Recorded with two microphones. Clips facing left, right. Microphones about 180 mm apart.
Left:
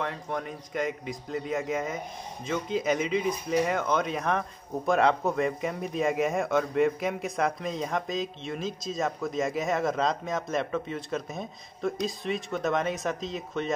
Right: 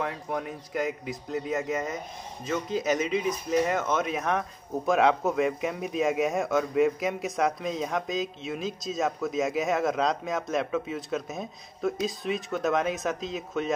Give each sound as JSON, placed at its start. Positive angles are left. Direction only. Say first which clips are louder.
{"t": 0.0, "sound": "speech", "louder": "right 1 dB", "side_deg": -5}